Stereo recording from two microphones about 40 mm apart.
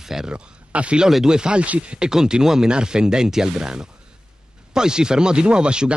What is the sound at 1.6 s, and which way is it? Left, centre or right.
Speech, right.